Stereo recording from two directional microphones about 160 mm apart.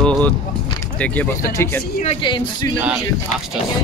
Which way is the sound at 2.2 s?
25° left (ahead or behind).